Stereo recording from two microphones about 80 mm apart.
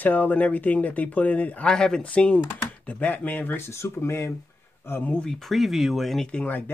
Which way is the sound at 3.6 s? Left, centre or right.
Left.